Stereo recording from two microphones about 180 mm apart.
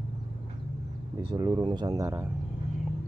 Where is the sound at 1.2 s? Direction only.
20° right (ahead or behind).